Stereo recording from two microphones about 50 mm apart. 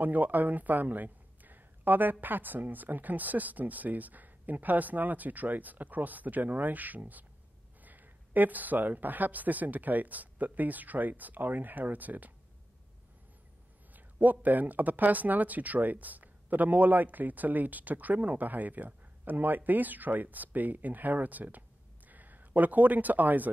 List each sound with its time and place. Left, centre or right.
0.0 s speech: right
13.9 s speech: right